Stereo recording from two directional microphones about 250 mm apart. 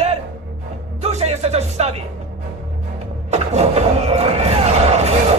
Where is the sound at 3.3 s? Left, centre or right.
Right.